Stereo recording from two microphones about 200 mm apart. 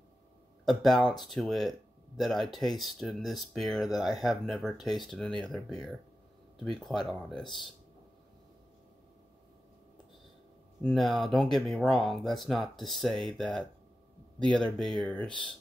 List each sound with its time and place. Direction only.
0.7 s speech: centre (ahead or behind)
7.4 s speech: 25° left (ahead or behind)
10.8 s speech: 5° left (ahead or behind)